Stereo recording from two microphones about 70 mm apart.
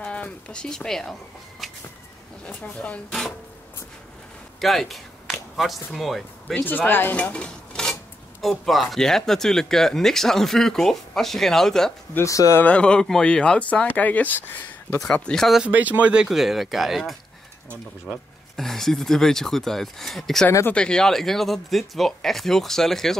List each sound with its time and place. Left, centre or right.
0.0 s speech: centre
1.6 s a sound: centre
2.6 s speech: centre
3.1 s speech: centre
4.6 s speech: centre
6.4 s speech: left
7.2 s speech: centre
12.3 s speech: left
12.6 s speech: centre
15.3 s speech: centre
15.6 s speech: right
16.3 s speech: centre